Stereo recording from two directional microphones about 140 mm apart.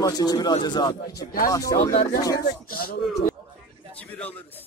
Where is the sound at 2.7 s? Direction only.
90° left.